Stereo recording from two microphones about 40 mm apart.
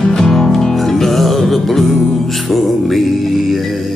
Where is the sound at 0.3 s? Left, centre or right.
Centre.